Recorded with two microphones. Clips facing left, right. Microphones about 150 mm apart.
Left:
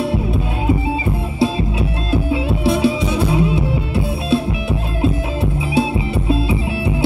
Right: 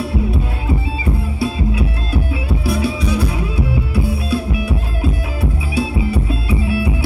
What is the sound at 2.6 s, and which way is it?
Music, 25° left (ahead or behind).